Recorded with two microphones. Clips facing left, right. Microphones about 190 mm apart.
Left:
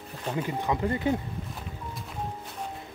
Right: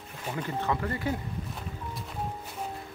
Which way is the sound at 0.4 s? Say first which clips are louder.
Left 2 dB; 15° left (ahead or behind).